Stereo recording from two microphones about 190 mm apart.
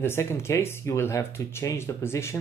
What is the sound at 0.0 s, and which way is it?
Speech, 10° left (ahead or behind).